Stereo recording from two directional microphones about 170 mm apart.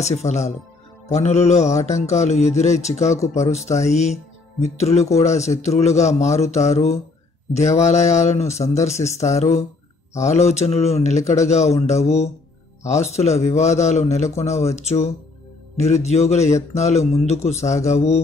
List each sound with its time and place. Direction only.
0.0 s mantra: 40° left (ahead or behind)
3.1 s speech: 15° left (ahead or behind)
3.4 s mantra: 40° left (ahead or behind)
3.9 s speech: 40° left (ahead or behind)
5.6 s mantra: 40° left (ahead or behind)
8.9 s speech: 15° left (ahead or behind)
9.3 s mantra: 40° left (ahead or behind)
14.5 s speech: 15° left (ahead or behind)
14.8 s mantra: 40° left (ahead or behind)